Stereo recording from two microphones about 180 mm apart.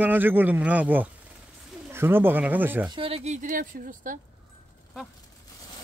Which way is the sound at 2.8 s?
30° right (ahead or behind).